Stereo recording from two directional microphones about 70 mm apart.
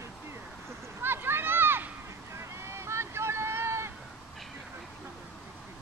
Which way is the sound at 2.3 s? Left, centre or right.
Right.